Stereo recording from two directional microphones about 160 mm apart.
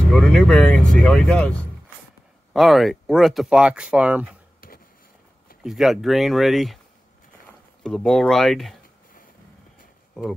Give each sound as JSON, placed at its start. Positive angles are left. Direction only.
{"t": 0.1, "sound": "speech", "side_deg": 5}
{"t": 2.5, "sound": "speech", "side_deg": 0}
{"t": 4.6, "sound": "a sound", "side_deg": 65}
{"t": 5.6, "sound": "speech", "side_deg": 0}
{"t": 7.8, "sound": "speech", "side_deg": 5}